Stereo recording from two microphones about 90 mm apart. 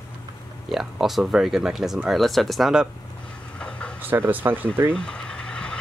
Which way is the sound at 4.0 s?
20° right (ahead or behind).